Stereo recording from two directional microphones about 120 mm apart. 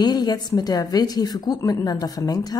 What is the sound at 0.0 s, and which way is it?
A woman's voice, 35° left (ahead or behind).